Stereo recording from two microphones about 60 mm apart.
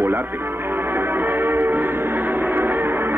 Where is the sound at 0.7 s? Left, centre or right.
Right.